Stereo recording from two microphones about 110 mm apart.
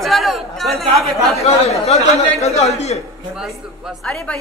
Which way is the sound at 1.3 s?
70° left (ahead or behind).